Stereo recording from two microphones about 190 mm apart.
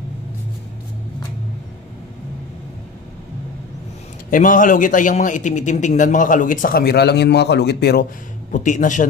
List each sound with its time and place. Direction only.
4.3 s a man's voice: 45° left (ahead or behind)